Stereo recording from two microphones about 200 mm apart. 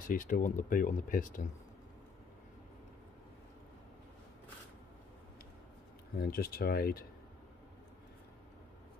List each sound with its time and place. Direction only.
0.1 s speech: 45° left (ahead or behind)
6.1 s speech: 50° left (ahead or behind)